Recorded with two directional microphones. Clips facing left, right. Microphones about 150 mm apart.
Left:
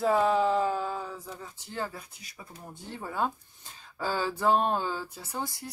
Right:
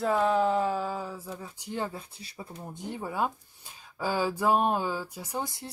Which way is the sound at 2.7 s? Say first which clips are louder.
Right 1 dB; 15° right (ahead or behind).